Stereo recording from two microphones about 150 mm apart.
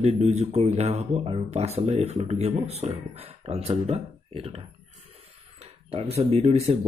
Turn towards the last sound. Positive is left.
turn(degrees=-45)  # may be behind; listen again after turning